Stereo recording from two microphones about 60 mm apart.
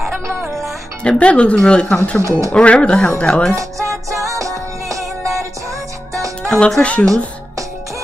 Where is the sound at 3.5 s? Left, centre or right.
Right.